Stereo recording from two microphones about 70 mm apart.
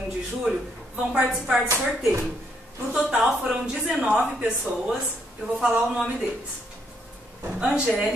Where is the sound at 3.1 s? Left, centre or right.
Centre.